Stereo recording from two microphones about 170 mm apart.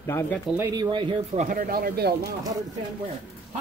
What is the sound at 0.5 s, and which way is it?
Speech, 20° right (ahead or behind).